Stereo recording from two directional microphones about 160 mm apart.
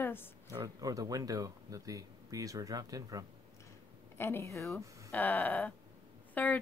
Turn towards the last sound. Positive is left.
turn(degrees=10)  # may be behind; listen again after turning